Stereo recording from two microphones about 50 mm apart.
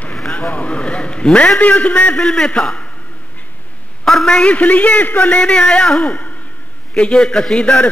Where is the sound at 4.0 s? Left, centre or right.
Centre; by 5.4 s left.